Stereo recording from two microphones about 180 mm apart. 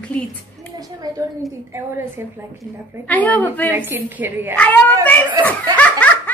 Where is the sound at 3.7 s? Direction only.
10° right (ahead or behind).